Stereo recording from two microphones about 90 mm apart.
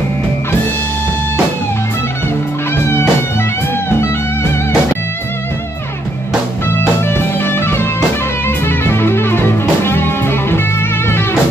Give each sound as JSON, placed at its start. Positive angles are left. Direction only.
{"t": 2.7, "sound": "music", "side_deg": 25}
{"t": 7.1, "sound": "music", "side_deg": 25}